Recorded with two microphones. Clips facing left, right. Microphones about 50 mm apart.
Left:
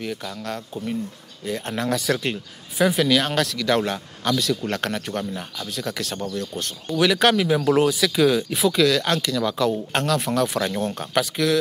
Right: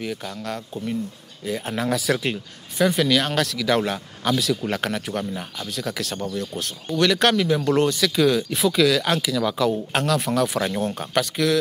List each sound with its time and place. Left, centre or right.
0.0 s speech: centre